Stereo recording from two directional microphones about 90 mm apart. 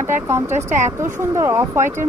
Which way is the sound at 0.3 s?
25° right (ahead or behind).